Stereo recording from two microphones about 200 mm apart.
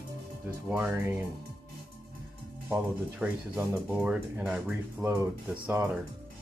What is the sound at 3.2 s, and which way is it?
Speech, 10° right (ahead or behind).